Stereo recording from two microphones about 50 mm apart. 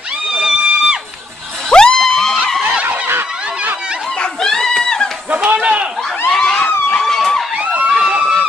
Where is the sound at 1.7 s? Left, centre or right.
Centre.